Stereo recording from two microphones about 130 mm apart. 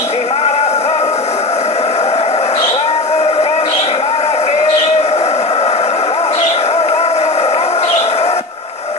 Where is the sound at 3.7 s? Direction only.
50° left (ahead or behind).